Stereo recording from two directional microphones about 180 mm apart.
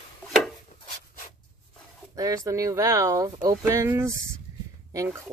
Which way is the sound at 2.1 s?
20° right (ahead or behind).